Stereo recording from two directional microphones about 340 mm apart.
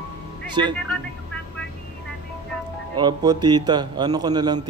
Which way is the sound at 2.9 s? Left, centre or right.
Centre.